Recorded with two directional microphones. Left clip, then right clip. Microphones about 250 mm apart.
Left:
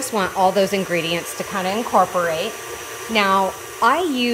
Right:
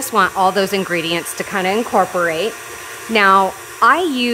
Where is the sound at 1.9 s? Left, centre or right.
Right.